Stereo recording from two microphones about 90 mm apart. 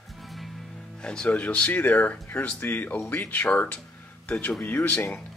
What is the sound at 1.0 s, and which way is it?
Speech, 10° left (ahead or behind).